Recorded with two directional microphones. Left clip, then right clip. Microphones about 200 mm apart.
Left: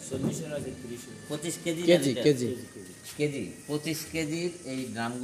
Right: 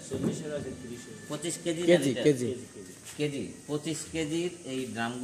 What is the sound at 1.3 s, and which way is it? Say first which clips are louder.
Speech: even; 25° left (ahead or behind).